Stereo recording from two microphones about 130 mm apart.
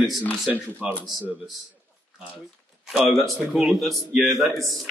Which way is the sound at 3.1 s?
Centre (ahead or behind).